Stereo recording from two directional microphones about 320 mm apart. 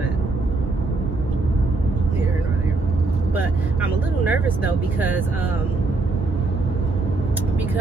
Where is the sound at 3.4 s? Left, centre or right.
Centre.